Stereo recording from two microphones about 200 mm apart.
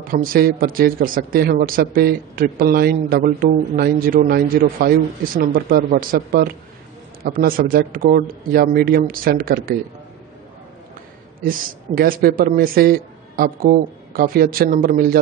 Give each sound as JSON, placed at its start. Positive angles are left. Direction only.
{"t": 0.0, "sound": "speech", "side_deg": -45}
{"t": 11.4, "sound": "speech", "side_deg": -45}